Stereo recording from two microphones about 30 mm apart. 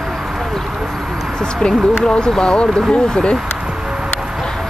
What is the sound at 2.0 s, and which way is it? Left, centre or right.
Speech, left.